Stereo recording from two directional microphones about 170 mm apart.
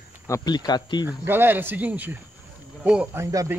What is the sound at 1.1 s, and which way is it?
Speech, 10° right (ahead or behind).